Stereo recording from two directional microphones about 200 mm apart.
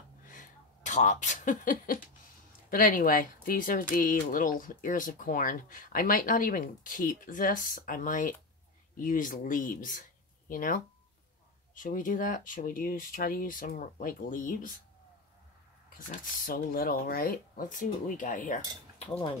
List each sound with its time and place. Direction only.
0.2 s a sound: 40° left (ahead or behind)
2.7 s speech: 45° left (ahead or behind)
16.1 s speech: 45° left (ahead or behind)